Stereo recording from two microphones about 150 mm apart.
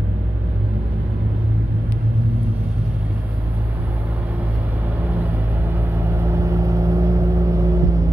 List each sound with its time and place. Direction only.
5.2 s vehicle: 15° right (ahead or behind)